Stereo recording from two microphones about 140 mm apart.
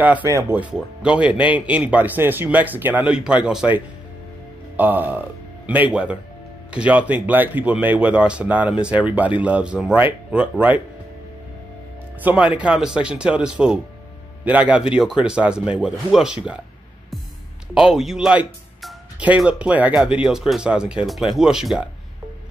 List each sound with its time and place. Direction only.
0.3 s speech: 15° right (ahead or behind)
12.2 s a man's voice: 10° right (ahead or behind)
17.7 s speech: 5° right (ahead or behind)